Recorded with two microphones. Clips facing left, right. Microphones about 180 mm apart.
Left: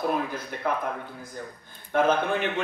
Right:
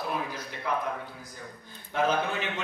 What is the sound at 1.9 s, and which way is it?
Speech, 55° left (ahead or behind).